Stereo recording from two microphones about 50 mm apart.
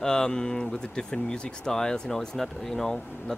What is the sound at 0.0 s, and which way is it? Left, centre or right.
Speech, centre.